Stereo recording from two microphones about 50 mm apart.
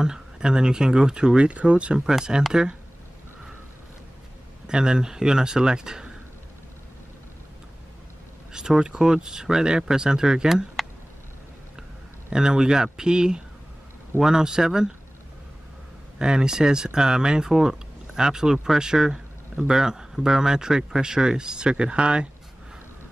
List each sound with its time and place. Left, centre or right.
0.0 s speech: centre
2.0 s speech: centre
4.6 s speech: centre
8.5 s speech: centre
12.3 s speech: centre
16.2 s speech: centre